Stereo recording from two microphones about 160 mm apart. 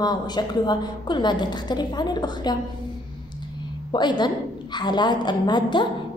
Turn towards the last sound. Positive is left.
turn(degrees=30)  # may be behind; listen again after turning